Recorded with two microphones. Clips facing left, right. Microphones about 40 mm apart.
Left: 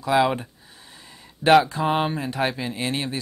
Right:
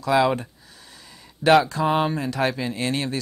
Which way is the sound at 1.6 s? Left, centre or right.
Left.